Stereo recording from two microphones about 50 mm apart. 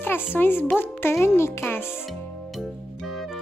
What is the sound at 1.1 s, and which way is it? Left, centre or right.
Speech, left.